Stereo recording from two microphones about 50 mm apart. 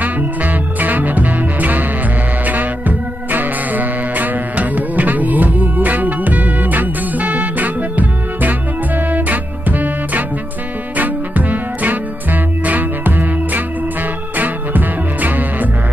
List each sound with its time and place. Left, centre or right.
0.0 s music: right